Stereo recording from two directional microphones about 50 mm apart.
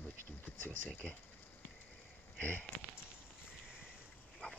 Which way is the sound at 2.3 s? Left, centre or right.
Left.